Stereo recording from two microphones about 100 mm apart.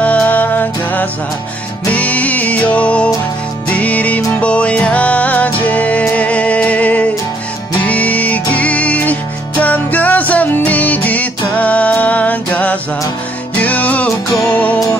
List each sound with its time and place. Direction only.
0.0 s music: 15° left (ahead or behind)